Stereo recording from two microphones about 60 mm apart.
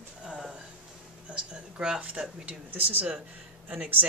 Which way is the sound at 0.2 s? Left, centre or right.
Centre.